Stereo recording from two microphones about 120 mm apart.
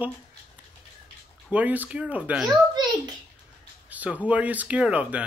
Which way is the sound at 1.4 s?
15° right (ahead or behind).